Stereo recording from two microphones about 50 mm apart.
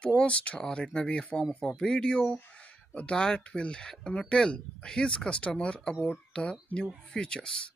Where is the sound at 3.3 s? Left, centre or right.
Left.